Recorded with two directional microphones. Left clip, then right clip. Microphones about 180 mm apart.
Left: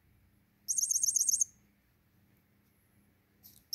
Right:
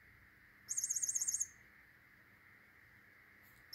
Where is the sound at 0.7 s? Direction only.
30° right (ahead or behind).